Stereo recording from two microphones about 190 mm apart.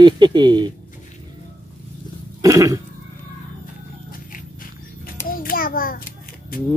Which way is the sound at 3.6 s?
45° left (ahead or behind).